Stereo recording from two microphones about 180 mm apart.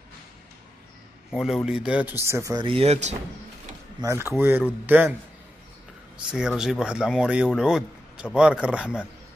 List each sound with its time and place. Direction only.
1.3 s speech: centre (ahead or behind); by 3.2 s 40° right (ahead or behind)
4.0 s speech: 15° right (ahead or behind)
6.2 s speech: 5° right (ahead or behind)